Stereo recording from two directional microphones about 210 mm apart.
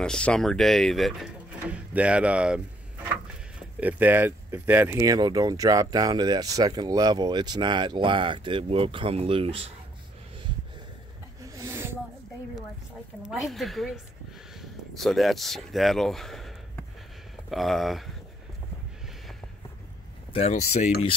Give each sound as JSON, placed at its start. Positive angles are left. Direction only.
{"t": 0.0, "sound": "speech", "side_deg": 5}
{"t": 3.8, "sound": "speech", "side_deg": -10}
{"t": 11.5, "sound": "snake", "side_deg": -10}
{"t": 13.3, "sound": "speech", "side_deg": 0}
{"t": 20.3, "sound": "speech", "side_deg": 30}